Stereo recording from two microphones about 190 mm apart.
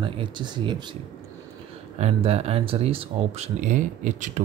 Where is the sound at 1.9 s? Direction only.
35° right (ahead or behind).